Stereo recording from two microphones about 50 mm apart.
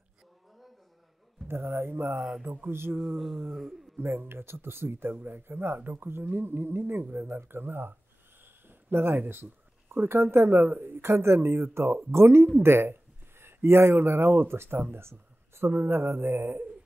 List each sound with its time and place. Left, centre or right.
1.5 s speech: right
2.4 s mantra: right
2.7 s speech: right
3.2 s a sound: centre
4.0 s speech: right
8.6 s a sound: right
9.3 s speech: right